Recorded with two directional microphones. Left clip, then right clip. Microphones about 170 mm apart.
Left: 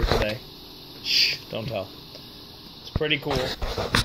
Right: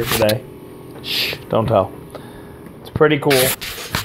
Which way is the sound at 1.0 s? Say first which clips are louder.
Right 1 dB; 15° right (ahead or behind).